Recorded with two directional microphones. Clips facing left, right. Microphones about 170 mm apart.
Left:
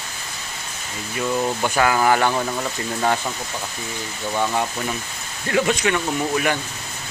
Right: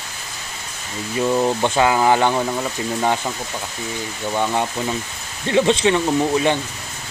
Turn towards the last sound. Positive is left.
turn(degrees=-25)  # may be behind; listen again after turning